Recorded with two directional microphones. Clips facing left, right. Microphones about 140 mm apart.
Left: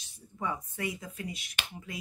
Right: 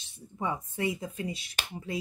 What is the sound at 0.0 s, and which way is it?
Speech, 25° right (ahead or behind).